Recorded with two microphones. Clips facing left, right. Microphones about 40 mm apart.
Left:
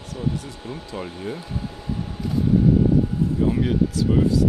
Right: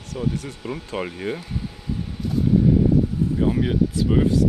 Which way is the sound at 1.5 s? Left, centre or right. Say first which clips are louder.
Even; left.